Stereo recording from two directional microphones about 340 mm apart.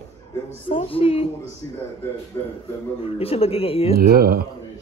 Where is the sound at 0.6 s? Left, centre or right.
Centre.